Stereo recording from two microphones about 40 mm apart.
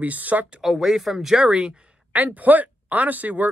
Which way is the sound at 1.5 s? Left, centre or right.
Right.